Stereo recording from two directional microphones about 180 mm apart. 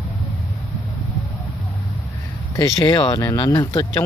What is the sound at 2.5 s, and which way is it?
Speech, 20° left (ahead or behind).